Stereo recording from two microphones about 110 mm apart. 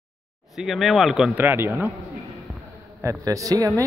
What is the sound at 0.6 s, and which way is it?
Speech, centre (ahead or behind).